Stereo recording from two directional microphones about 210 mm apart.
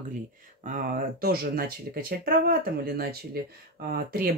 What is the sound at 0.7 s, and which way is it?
Speech, 40° right (ahead or behind).